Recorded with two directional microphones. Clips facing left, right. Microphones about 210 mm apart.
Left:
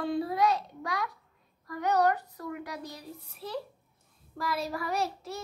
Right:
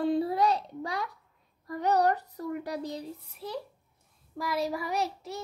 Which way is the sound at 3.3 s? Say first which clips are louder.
Left 2 dB; 15° right (ahead or behind).